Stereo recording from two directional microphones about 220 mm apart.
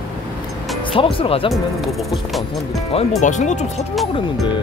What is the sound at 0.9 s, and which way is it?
Speech, 25° left (ahead or behind).